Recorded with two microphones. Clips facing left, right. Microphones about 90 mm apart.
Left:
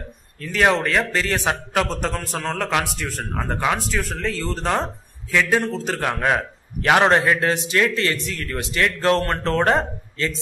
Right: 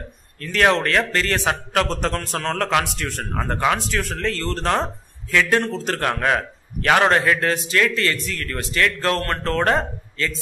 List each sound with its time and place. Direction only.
0.4 s a man's voice: 10° left (ahead or behind)